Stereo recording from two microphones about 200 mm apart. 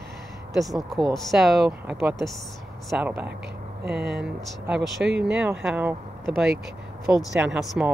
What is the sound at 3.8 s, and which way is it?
Speech, 55° right (ahead or behind).